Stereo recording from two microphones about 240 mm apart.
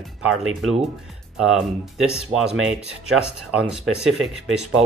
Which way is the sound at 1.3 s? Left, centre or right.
Centre.